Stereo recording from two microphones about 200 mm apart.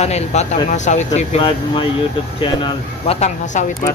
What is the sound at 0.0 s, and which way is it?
Speech, 35° left (ahead or behind).